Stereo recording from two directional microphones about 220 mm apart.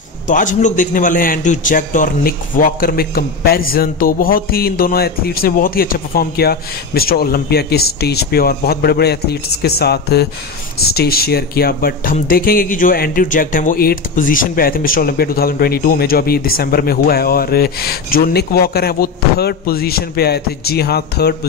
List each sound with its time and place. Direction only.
0.3 s a man's voice: 35° left (ahead or behind)